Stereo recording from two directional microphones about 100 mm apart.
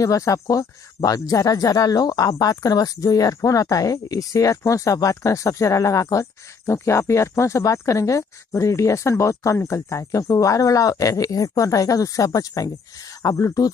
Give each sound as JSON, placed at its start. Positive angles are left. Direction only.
{"t": 0.0, "sound": "speech", "side_deg": 35}